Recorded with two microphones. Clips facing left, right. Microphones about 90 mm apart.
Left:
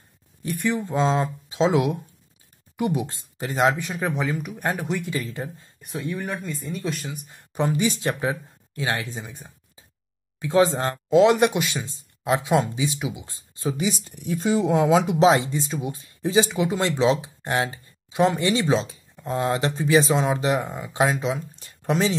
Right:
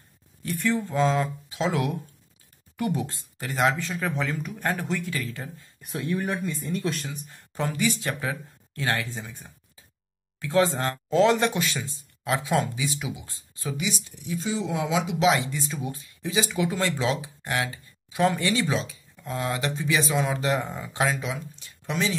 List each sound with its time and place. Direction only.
0.4 s speech: 20° left (ahead or behind)
5.8 s speech: centre (ahead or behind)
7.1 s speech: 20° left (ahead or behind)
14.0 s speech: 55° left (ahead or behind)
15.2 s speech: 35° left (ahead or behind)
16.1 s speech: 35° left (ahead or behind)
21.5 s a sound: 45° left (ahead or behind)